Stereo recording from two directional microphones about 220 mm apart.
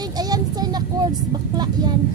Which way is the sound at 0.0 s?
15° right (ahead or behind).